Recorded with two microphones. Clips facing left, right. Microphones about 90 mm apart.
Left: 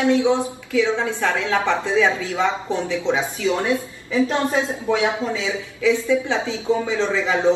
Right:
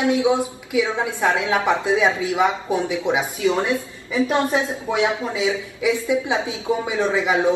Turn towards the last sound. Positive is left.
turn(degrees=-15)  # may be behind; listen again after turning